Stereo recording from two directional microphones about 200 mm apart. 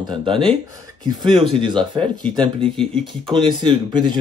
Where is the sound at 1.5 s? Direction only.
25° right (ahead or behind).